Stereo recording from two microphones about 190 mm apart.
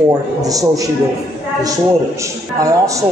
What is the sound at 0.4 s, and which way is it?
Speech, 20° right (ahead or behind).